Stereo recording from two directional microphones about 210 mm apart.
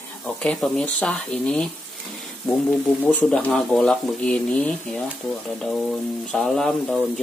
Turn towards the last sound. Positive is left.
turn(degrees=0)  # may be behind; listen again after turning